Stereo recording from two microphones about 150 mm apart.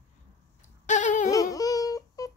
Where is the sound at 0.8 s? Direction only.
55° left (ahead or behind).